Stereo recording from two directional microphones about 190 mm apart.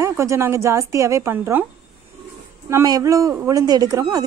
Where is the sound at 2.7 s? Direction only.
15° right (ahead or behind).